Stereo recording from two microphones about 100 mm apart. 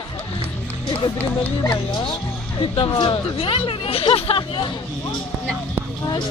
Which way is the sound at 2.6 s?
55° left (ahead or behind).